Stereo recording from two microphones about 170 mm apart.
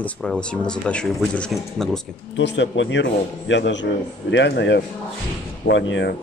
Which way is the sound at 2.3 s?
90° left.